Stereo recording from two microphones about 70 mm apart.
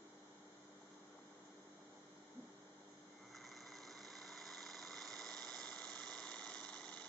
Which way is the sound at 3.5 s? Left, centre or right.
Centre.